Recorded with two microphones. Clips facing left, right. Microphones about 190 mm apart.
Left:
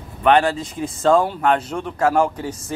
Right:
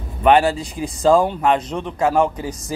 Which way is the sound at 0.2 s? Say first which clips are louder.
Right 1 dB; 15° right (ahead or behind).